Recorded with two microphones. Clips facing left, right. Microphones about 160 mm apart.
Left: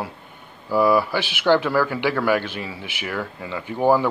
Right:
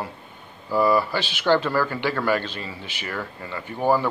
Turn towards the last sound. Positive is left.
turn(degrees=15)  # may be behind; listen again after turning